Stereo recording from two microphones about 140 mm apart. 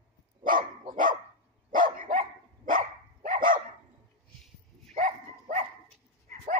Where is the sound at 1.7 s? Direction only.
75° right (ahead or behind).